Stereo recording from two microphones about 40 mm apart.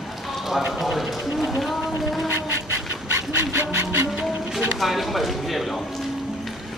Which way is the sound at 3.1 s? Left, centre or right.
Right.